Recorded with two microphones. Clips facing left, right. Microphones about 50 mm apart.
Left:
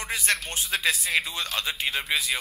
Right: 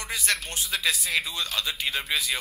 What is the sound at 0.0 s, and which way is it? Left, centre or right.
Speech, left.